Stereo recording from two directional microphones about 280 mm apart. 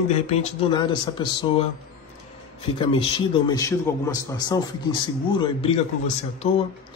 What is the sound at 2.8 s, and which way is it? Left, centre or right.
A man's voice, centre.